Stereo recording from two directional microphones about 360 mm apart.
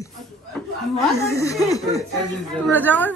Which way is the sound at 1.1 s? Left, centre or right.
Centre.